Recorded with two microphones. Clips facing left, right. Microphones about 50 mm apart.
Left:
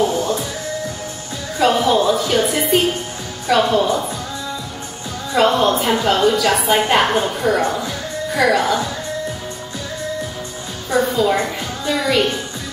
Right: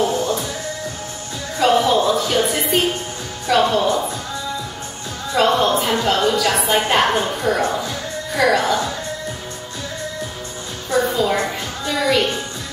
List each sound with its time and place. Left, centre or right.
0.0 s music: centre
1.6 s music: centre
3.4 s a woman's voice: centre
5.3 s a woman's voice: centre
10.9 s a woman's voice: centre
11.8 s music: centre